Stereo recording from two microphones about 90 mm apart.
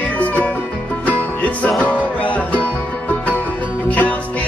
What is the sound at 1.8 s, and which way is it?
Music, 15° left (ahead or behind).